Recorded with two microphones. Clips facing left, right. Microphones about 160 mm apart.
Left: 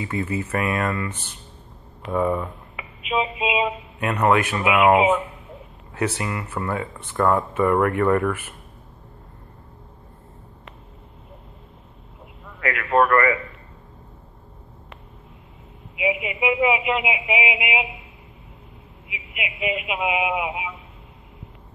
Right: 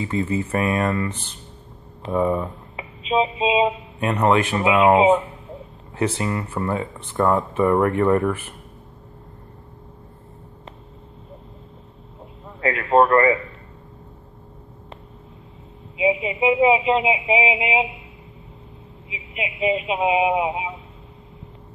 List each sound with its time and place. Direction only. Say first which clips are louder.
0.0 s speech: right 3 dB; 25° right (ahead or behind)
12.5 s speech: right 3 dB; 30° right (ahead or behind)
16.0 s speech: right 4 dB; 30° right (ahead or behind)
19.0 s a man's voice: right 3 dB; 30° right (ahead or behind)